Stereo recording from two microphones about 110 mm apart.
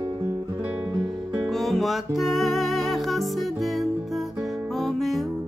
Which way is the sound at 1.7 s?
Centre (ahead or behind).